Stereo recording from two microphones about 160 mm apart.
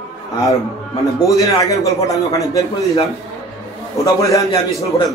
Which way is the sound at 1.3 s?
20° left (ahead or behind).